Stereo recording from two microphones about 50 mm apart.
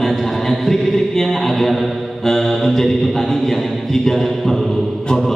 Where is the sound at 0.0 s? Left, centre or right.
Centre.